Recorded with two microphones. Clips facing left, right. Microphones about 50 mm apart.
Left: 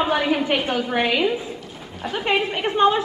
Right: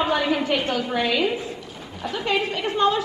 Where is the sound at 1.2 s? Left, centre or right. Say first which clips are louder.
Left 2 dB; centre.